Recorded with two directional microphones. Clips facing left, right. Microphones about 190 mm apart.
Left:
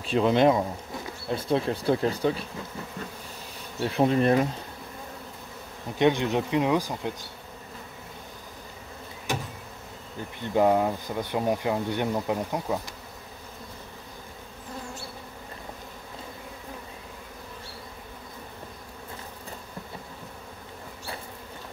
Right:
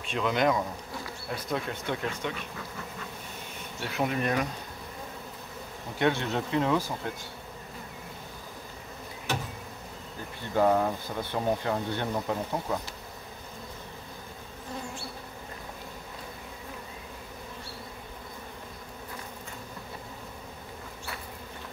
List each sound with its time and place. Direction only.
0.0 s speech: 35° left (ahead or behind)
3.8 s speech: 30° left (ahead or behind)
5.9 s speech: 15° left (ahead or behind)
10.4 s speech: 15° left (ahead or behind)